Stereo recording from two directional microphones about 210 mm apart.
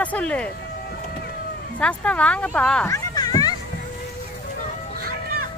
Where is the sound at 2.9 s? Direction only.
20° left (ahead or behind).